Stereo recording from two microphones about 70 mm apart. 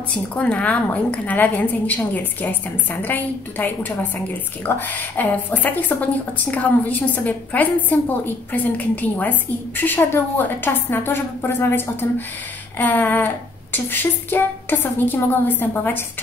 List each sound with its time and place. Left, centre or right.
0.4 s a woman's voice: centre
12.7 s a sound: left
14.3 s a woman's voice: left